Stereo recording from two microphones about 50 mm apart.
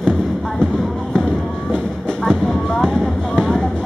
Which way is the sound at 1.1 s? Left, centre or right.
Centre.